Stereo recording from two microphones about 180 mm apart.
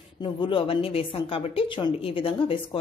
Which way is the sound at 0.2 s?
30° left (ahead or behind).